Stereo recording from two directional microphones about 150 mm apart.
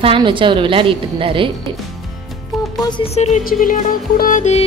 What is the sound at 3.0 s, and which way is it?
Speech, 45° left (ahead or behind).